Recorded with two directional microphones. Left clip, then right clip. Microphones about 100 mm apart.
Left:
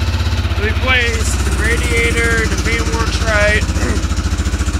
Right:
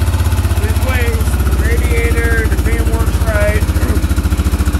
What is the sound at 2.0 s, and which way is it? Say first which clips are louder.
Speech: left 2 dB; 10° left (ahead or behind).